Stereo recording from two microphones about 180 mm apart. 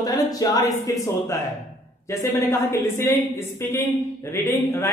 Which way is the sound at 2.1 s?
15° left (ahead or behind).